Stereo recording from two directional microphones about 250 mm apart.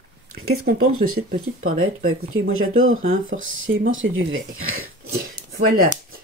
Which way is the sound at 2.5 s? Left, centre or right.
Right.